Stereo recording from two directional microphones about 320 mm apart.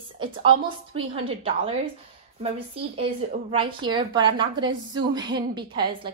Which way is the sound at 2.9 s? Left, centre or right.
Centre.